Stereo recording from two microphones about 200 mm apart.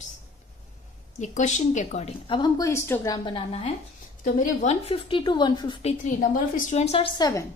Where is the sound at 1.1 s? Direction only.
35° left (ahead or behind).